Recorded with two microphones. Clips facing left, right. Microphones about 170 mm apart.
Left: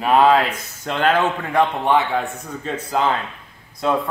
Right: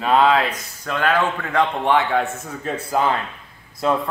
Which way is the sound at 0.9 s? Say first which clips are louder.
Left 2 dB; 25° left (ahead or behind).